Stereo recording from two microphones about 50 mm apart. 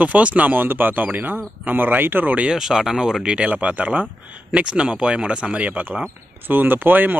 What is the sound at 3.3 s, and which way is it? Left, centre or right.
Speech, right.